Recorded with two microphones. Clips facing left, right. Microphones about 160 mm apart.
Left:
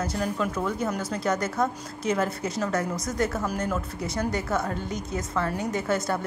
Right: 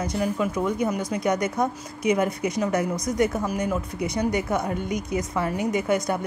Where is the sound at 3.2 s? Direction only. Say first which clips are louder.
Right 3 dB; 15° right (ahead or behind).